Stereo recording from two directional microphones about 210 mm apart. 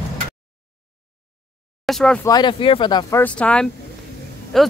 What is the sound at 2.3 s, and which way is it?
Speech, 20° left (ahead or behind).